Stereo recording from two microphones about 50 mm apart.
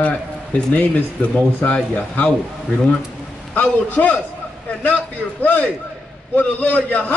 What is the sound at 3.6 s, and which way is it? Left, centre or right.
Speech, left.